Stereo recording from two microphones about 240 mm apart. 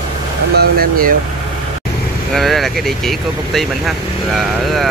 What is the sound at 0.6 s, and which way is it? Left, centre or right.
Speech, right.